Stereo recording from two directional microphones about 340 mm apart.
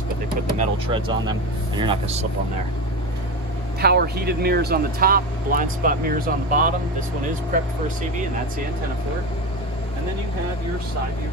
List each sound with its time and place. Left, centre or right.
0.6 s speech: centre
3.8 s speech: right